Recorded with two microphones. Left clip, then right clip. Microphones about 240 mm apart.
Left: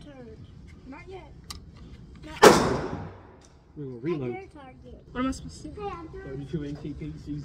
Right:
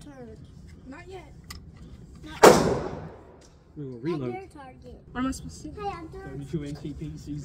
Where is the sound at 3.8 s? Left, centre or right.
Centre.